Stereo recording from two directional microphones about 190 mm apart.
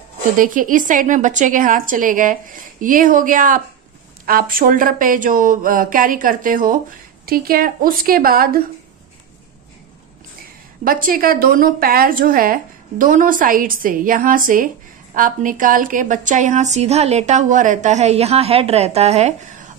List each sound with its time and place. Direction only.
0.4 s a woman's voice: 45° right (ahead or behind)
10.4 s a woman's voice: 50° right (ahead or behind)